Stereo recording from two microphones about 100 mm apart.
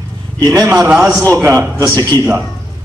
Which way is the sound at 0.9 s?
15° right (ahead or behind).